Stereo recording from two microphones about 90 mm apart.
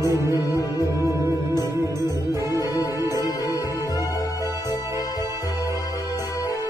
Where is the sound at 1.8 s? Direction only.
35° right (ahead or behind).